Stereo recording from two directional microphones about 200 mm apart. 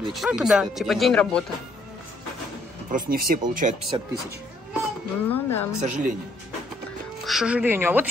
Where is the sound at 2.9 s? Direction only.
45° right (ahead or behind).